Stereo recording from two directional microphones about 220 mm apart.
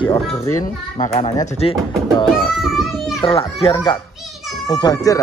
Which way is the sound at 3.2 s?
25° left (ahead or behind).